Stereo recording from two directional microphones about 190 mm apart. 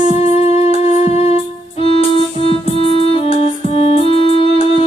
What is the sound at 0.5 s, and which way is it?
Music, 35° left (ahead or behind).